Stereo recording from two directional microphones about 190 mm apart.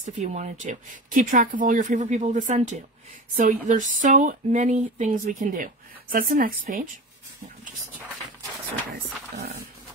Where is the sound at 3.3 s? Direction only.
45° right (ahead or behind).